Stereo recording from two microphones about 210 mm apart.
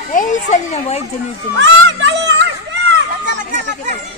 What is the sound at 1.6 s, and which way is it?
Speech, 55° right (ahead or behind).